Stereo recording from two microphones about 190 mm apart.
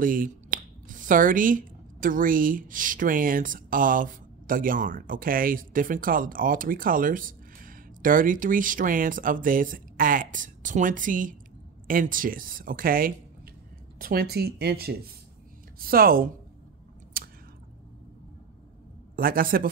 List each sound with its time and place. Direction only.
0.0 s speech: 45° right (ahead or behind)
17.1 s squish: 50° right (ahead or behind)
19.1 s speech: 50° right (ahead or behind)